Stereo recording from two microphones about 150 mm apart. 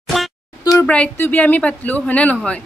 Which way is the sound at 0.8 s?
10° left (ahead or behind).